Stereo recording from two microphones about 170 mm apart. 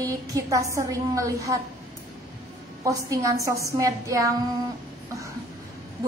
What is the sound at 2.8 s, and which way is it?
Female singing, 20° right (ahead or behind).